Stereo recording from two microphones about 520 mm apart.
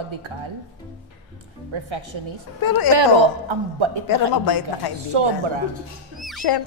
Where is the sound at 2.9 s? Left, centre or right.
Right.